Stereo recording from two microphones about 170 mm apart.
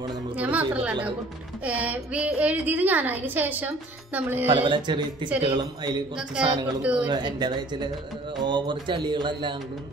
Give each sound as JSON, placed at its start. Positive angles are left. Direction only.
{"t": 0.4, "sound": "music", "side_deg": -10}
{"t": 1.6, "sound": "a woman's voice", "side_deg": -10}
{"t": 4.5, "sound": "music", "side_deg": -30}
{"t": 5.4, "sound": "speech", "side_deg": -30}
{"t": 6.4, "sound": "a woman's voice", "side_deg": -5}
{"t": 7.1, "sound": "music", "side_deg": -25}